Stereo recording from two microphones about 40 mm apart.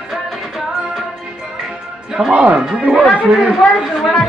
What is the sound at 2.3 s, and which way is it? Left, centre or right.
A woman's voice, right.